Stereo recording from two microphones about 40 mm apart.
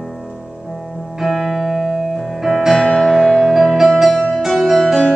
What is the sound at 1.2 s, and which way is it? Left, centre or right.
Music, centre.